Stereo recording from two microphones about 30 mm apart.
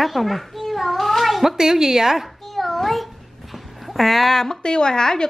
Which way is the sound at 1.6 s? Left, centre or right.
Centre.